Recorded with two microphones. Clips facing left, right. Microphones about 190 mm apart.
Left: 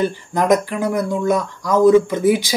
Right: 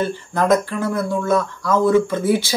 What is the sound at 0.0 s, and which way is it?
Speech, 15° left (ahead or behind).